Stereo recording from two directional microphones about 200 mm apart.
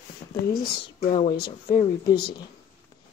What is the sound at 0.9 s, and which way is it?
A woman's voice, 30° left (ahead or behind).